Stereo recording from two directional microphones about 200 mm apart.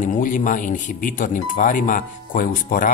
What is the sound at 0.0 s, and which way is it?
Speech, 40° left (ahead or behind).